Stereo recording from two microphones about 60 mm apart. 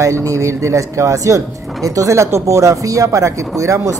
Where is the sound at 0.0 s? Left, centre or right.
Right.